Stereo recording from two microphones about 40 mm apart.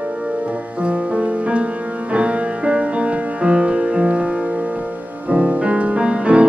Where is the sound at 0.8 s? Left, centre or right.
Right.